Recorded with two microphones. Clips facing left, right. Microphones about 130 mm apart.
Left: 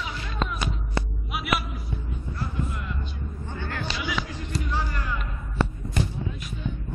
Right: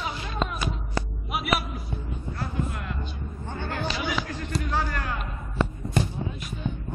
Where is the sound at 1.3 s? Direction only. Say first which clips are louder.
Right 2 dB; 35° right (ahead or behind).